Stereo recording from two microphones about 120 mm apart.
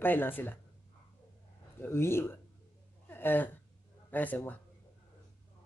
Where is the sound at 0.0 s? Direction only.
15° left (ahead or behind).